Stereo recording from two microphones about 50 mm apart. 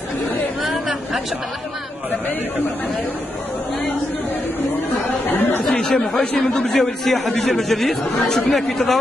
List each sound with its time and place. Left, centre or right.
0.7 s a sound: centre
5.2 s chatter: left
5.7 s a man's voice: centre